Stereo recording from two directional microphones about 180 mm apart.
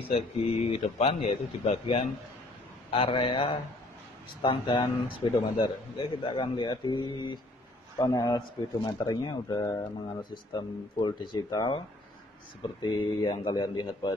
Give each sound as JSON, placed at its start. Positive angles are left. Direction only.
{"t": 0.1, "sound": "a man's voice", "side_deg": 35}